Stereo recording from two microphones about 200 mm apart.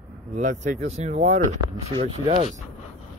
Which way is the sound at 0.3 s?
35° right (ahead or behind).